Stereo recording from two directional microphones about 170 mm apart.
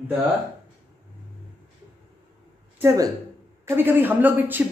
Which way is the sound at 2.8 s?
20° right (ahead or behind).